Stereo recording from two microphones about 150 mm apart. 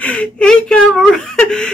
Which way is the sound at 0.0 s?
10° left (ahead or behind).